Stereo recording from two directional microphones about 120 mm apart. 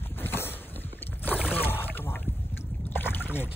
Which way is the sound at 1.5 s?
15° left (ahead or behind).